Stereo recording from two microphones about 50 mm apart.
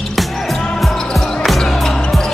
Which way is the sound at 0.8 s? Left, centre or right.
Centre.